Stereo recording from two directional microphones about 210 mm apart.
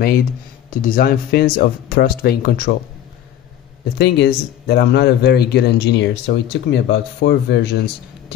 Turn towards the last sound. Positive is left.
turn(degrees=55)  # may be behind; listen again after turning